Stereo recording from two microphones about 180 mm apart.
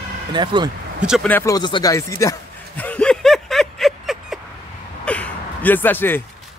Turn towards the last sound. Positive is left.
turn(degrees=10)  # may be behind; listen again after turning